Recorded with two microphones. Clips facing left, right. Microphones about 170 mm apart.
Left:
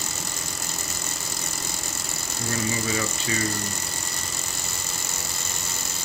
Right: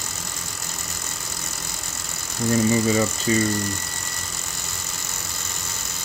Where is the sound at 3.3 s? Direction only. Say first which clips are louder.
Right 9 dB; 35° right (ahead or behind).